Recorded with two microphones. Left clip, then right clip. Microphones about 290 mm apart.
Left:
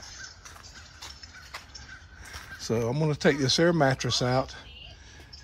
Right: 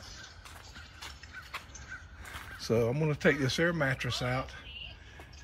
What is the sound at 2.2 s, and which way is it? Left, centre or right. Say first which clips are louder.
Speech: left 1 dB; centre.